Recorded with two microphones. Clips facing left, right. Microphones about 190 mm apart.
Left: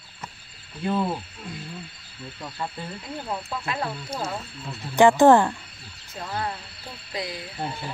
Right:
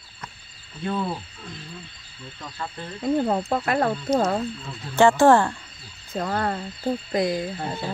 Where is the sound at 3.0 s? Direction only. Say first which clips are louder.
Right 13 dB; 50° right (ahead or behind).